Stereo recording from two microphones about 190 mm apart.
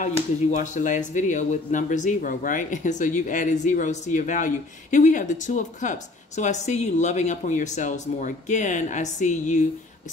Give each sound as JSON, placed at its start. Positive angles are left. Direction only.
{"t": 0.0, "sound": "speech", "side_deg": 40}